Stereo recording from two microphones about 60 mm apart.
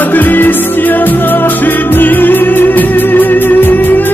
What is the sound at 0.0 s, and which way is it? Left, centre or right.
Music, left.